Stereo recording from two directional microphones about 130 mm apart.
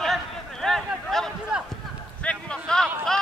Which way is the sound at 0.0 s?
Centre (ahead or behind).